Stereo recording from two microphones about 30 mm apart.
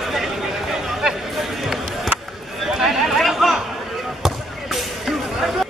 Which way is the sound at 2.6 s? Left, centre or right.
Centre.